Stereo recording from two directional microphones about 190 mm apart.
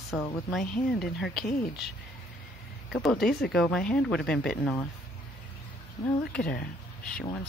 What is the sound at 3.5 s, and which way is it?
Speech, 5° left (ahead or behind).